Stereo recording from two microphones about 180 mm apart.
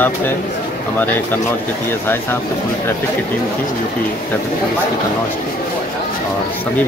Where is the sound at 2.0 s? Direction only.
10° left (ahead or behind).